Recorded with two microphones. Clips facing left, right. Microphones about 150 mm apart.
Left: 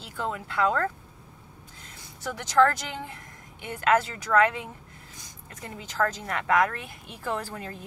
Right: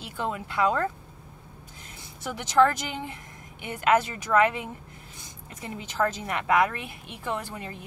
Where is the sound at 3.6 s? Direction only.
20° right (ahead or behind).